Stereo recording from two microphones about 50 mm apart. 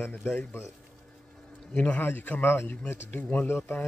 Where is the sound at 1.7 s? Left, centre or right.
Left.